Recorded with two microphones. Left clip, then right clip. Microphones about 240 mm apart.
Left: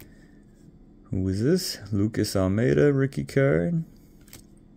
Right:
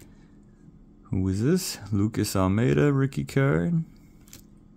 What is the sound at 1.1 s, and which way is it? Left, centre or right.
Speech, centre.